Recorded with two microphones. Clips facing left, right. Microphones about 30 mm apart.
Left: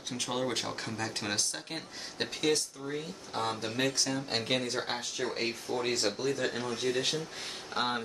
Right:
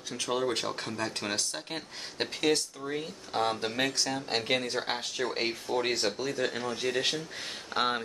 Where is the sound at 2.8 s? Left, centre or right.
Right.